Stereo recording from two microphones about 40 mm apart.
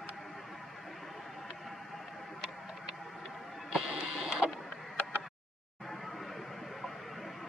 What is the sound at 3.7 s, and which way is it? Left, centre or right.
Music, centre.